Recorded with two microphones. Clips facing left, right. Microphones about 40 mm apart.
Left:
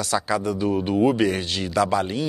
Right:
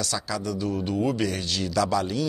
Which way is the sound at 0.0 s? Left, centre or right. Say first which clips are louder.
Left 6 dB; left.